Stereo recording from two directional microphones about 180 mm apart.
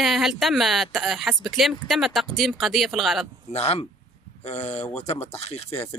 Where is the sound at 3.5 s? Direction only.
35° left (ahead or behind).